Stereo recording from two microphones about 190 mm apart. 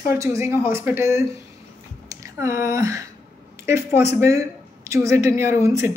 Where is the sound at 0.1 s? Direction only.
15° right (ahead or behind).